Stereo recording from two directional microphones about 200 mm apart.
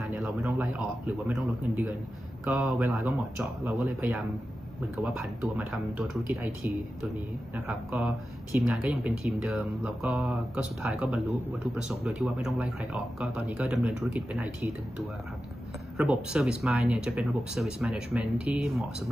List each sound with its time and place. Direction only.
0.2 s speech: 5° right (ahead or behind)